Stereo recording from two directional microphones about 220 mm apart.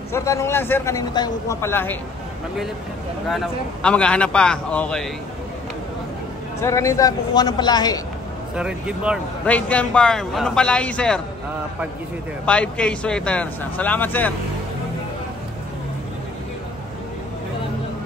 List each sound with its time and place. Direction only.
0.1 s a man's voice: 15° left (ahead or behind)
3.3 s speech: centre (ahead or behind)
6.6 s a man's voice: 15° left (ahead or behind)
8.5 s speech: 5° right (ahead or behind)
9.5 s speech: 5° left (ahead or behind)
12.4 s speech: 5° left (ahead or behind)